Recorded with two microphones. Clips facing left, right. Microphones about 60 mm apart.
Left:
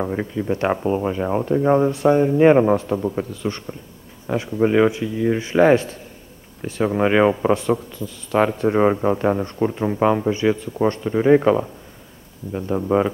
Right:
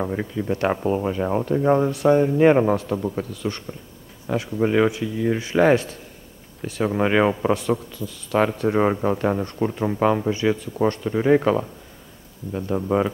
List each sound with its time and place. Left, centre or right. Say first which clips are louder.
0.1 s speech: left 2 dB; left